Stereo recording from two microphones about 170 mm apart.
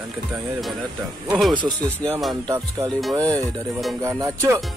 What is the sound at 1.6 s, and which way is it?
Speech, 30° right (ahead or behind).